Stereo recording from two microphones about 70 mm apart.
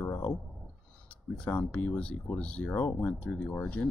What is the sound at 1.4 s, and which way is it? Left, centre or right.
Speech, centre.